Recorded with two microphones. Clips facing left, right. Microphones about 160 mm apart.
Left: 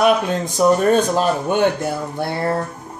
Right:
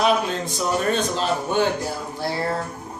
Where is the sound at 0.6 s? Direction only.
50° left (ahead or behind).